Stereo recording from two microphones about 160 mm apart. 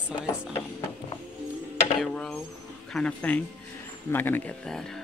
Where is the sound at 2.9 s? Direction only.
5° left (ahead or behind).